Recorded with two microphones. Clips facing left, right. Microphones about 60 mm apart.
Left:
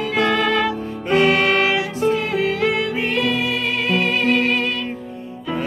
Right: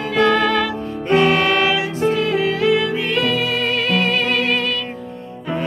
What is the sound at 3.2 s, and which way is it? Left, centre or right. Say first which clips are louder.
Music: right 2 dB; right.